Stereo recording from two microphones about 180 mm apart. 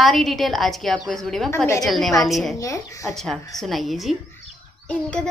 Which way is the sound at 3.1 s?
Centre (ahead or behind).